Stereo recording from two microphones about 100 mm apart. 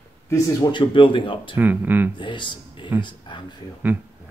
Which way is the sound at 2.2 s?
55° left (ahead or behind).